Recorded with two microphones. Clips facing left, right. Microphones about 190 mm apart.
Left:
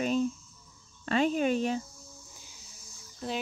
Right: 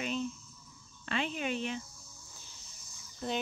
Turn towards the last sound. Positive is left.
turn(degrees=0)  # may be behind; listen again after turning